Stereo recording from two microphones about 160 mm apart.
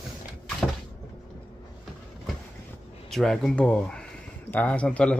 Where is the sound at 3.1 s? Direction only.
Centre (ahead or behind).